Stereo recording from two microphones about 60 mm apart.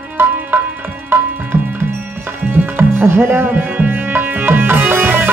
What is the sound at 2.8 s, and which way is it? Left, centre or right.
Music, right.